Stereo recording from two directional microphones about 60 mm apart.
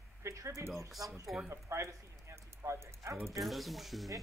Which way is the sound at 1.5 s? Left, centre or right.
Right.